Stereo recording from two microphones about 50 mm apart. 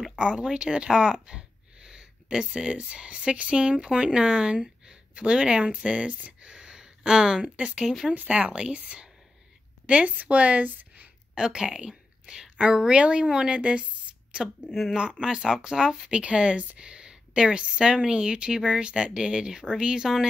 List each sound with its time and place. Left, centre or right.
0.1 s speech: centre
6.4 s a sound: centre
8.1 s a woman's voice: right
11.3 s a woman's voice: centre
14.7 s speech: centre
15.0 s a woman's voice: centre